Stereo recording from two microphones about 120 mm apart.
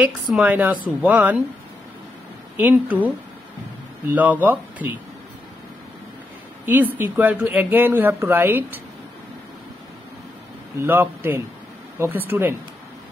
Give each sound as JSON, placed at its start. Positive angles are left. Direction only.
{"t": 0.3, "sound": "speech", "side_deg": -10}
{"t": 2.5, "sound": "speech", "side_deg": -10}
{"t": 4.1, "sound": "speech", "side_deg": -15}
{"t": 6.6, "sound": "speech", "side_deg": -15}
{"t": 10.9, "sound": "speech", "side_deg": -15}